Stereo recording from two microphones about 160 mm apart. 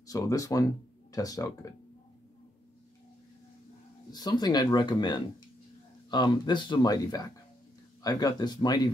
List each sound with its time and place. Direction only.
0.1 s speech: 20° left (ahead or behind)
4.1 s speech: 25° left (ahead or behind)